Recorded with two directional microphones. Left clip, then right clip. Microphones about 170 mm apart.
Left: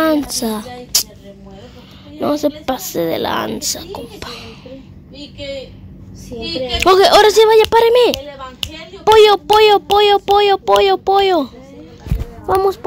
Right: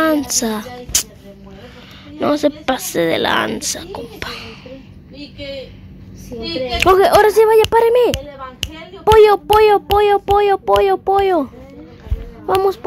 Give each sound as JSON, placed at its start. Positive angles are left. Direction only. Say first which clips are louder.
{"t": 0.0, "sound": "music", "louder": "even", "side_deg": 0}
{"t": 0.9, "sound": "a sound", "louder": "left 2 dB", "side_deg": -5}
{"t": 2.1, "sound": "a woman's voice", "louder": "right 1 dB", "side_deg": -5}
{"t": 6.4, "sound": "a woman's voice", "louder": "left 1 dB", "side_deg": -50}
{"t": 6.8, "sound": "a woman's voice", "louder": "left 2 dB", "side_deg": -5}